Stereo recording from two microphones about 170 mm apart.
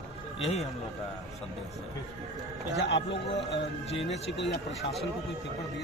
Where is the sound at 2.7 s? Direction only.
90° left.